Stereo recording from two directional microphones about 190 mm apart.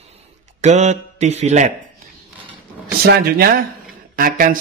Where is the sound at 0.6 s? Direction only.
35° right (ahead or behind).